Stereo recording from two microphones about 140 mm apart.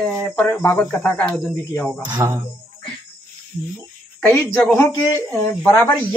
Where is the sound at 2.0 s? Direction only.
30° right (ahead or behind).